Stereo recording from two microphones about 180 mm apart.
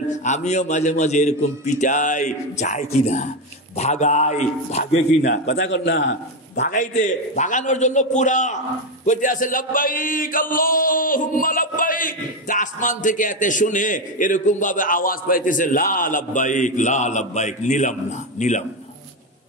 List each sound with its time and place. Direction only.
0.2 s a man's voice: 40° left (ahead or behind)
5.3 s a man's voice: 80° left
6.6 s chant: 45° left (ahead or behind)
7.0 s a man's voice: 45° left (ahead or behind)
9.0 s chant: 45° left (ahead or behind)
18.4 s a man's voice: 40° left (ahead or behind)